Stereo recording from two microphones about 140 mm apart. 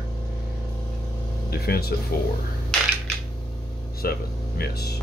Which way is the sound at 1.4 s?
90° left.